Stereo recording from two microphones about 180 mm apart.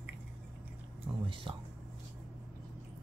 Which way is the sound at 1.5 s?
30° right (ahead or behind).